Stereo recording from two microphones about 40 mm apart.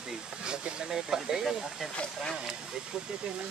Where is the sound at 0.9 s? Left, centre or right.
Centre.